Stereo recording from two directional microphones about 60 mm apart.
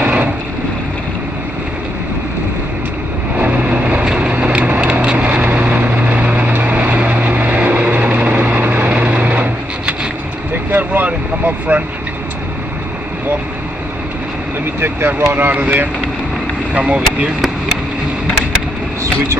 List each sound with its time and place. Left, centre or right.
0.0 s vehicle: right
3.3 s vehicle: right
14.8 s vehicle: right
16.7 s speech: right